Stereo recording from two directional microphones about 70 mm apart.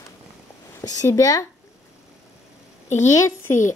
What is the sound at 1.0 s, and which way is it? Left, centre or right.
Speech, left.